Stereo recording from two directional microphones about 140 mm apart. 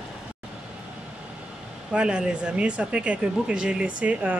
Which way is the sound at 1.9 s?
5° right (ahead or behind).